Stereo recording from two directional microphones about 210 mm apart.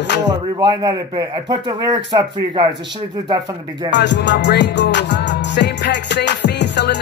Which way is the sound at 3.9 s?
55° left (ahead or behind).